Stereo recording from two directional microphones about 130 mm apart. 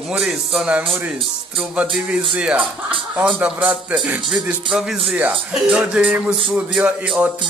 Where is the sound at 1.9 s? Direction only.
5° right (ahead or behind).